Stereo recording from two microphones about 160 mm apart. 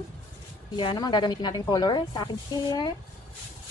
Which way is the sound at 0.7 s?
30° left (ahead or behind).